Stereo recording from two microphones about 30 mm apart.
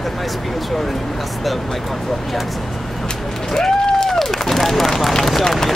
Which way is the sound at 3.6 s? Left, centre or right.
Centre.